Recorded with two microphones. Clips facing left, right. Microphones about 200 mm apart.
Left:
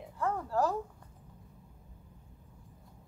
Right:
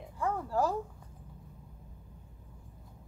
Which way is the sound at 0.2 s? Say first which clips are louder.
Even; 10° right (ahead or behind).